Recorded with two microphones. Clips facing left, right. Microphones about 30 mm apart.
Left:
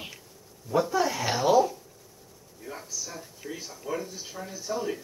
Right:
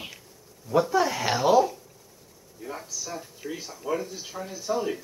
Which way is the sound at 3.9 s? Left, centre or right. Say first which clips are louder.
Right 1 dB; centre.